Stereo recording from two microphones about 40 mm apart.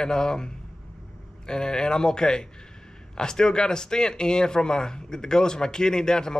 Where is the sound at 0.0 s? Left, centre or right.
Centre.